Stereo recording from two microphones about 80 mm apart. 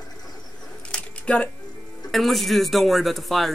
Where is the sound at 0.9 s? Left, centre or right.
Centre.